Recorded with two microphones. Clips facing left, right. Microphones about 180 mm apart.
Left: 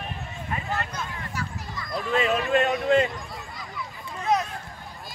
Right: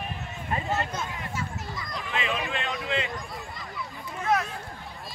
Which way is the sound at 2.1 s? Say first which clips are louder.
Left 8 dB; 40° left (ahead or behind).